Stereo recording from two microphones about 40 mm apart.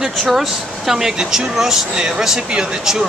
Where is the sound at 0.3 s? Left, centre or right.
Centre.